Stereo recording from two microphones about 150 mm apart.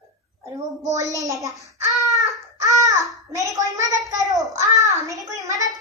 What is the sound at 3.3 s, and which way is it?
A woman's voice, 20° right (ahead or behind).